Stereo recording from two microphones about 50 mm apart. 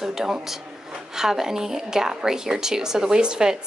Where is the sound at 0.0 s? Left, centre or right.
Centre.